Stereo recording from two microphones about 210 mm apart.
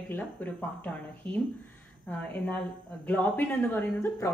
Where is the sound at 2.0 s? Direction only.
5° left (ahead or behind).